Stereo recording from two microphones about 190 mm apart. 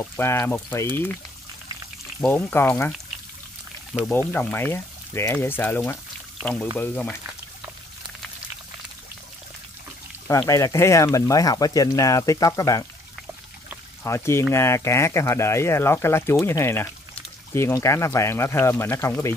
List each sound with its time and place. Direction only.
0.0 s speech: 15° left (ahead or behind)
2.2 s speech: 10° left (ahead or behind)
4.3 s speech: 10° left (ahead or behind)
10.2 s speech: 15° left (ahead or behind)
14.0 s speech: 15° left (ahead or behind)